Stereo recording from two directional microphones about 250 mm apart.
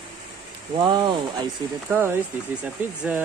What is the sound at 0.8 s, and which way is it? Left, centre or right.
Speech, centre.